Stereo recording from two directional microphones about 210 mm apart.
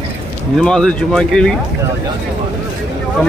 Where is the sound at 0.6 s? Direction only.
5° left (ahead or behind).